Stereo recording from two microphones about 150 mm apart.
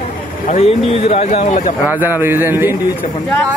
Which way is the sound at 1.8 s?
10° right (ahead or behind).